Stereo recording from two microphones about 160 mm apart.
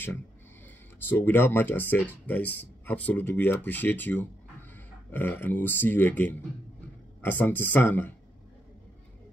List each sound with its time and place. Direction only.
0.9 s speech: 15° left (ahead or behind)